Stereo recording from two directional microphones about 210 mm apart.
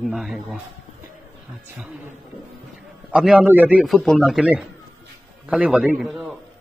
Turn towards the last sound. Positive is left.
turn(degrees=0)  # may be behind; listen again after turning